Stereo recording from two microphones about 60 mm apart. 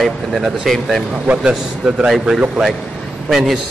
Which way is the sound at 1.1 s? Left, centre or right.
Centre.